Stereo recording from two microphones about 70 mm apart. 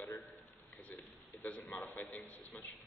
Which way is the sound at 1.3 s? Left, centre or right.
Left.